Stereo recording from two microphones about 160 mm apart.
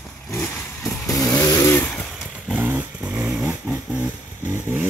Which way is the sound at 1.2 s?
20° left (ahead or behind).